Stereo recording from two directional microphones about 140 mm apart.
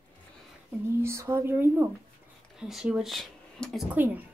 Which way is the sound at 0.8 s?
20° right (ahead or behind).